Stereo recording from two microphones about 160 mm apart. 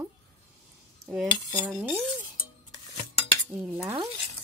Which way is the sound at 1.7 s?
15° right (ahead or behind).